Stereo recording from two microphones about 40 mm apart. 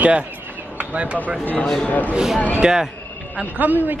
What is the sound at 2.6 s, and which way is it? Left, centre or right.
Speech, centre.